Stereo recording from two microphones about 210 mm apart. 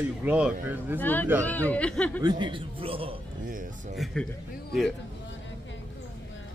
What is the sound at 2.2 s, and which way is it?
Speech, 20° right (ahead or behind).